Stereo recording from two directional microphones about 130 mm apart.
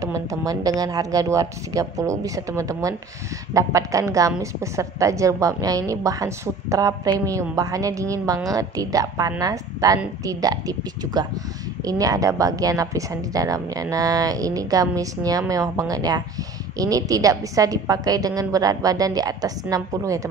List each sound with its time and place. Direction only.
0.0 s a woman's voice: 25° right (ahead or behind)